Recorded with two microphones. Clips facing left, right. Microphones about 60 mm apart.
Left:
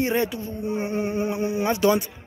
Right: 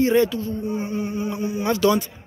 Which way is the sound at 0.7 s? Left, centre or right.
Left.